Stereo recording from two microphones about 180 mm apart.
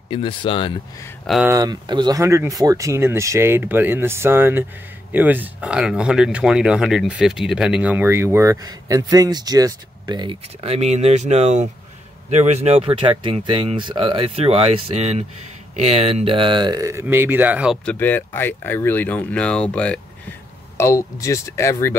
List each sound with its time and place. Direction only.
0.1 s speech: 30° left (ahead or behind)
1.2 s speech: centre (ahead or behind)
1.5 s speech: 20° right (ahead or behind)
17.8 s speech: 10° left (ahead or behind)